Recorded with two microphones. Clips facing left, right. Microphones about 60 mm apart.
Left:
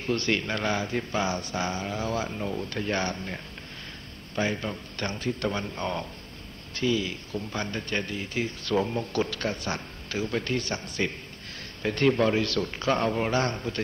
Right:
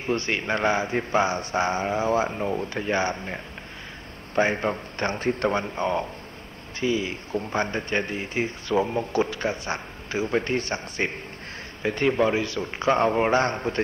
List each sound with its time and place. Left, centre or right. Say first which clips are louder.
0.0 s speech: right 1 dB; right
4.4 s a man's voice: right 6 dB; right
11.8 s speech: right 1 dB; centre